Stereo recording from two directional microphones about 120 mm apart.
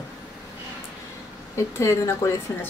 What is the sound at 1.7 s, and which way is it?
Speech, 25° left (ahead or behind).